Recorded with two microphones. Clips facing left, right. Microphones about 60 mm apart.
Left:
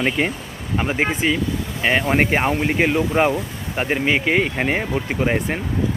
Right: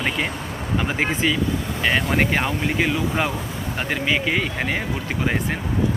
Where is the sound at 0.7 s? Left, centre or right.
Centre; by 4.5 s left.